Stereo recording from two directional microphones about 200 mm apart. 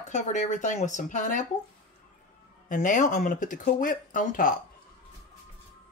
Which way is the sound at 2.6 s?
40° left (ahead or behind).